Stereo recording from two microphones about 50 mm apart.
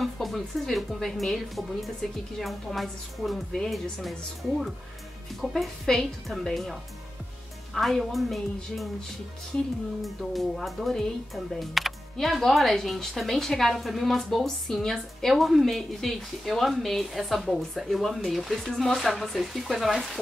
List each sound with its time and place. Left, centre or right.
0.0 s speech: centre
5.5 s speech: centre
10.0 s speech: centre